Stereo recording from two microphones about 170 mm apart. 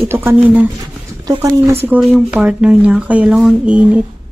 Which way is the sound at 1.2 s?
20° right (ahead or behind).